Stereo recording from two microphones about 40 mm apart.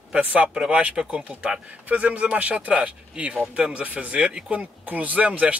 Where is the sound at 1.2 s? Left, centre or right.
Right.